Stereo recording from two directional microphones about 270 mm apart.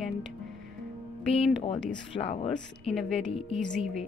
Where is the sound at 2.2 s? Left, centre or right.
Left.